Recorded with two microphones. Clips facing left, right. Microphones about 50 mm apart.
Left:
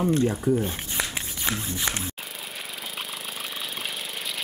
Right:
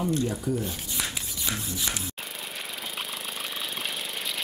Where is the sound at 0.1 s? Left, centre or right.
Left.